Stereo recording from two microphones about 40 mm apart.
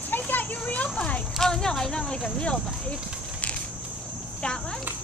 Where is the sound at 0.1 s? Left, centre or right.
Left.